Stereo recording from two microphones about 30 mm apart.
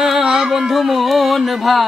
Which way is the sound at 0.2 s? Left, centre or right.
Right.